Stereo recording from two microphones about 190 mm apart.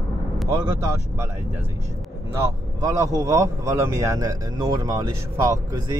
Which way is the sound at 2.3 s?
15° right (ahead or behind).